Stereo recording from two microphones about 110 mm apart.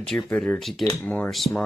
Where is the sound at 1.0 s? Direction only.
15° left (ahead or behind).